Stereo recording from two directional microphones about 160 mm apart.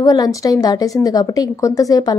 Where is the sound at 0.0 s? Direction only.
20° left (ahead or behind).